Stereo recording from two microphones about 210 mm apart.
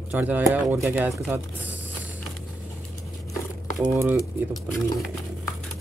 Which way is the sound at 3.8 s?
10° right (ahead or behind).